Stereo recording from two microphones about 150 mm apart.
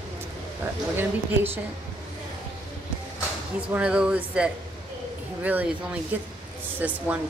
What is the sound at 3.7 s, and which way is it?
Speech, 5° right (ahead or behind).